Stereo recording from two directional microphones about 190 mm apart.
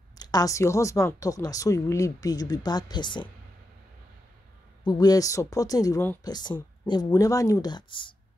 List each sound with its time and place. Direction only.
0.2 s speech: 20° left (ahead or behind)
4.8 s speech: 20° left (ahead or behind)